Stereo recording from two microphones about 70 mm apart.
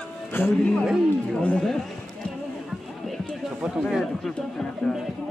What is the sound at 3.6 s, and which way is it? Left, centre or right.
Speech, centre.